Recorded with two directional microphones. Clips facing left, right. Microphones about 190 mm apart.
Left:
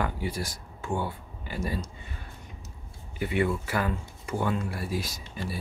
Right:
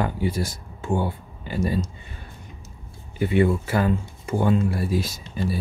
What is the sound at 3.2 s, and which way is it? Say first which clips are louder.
Speech: right 7 dB; 30° right (ahead or behind).